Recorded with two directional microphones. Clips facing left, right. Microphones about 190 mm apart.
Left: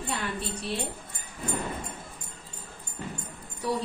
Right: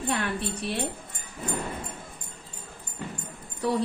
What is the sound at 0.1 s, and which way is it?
Speech, 65° right (ahead or behind).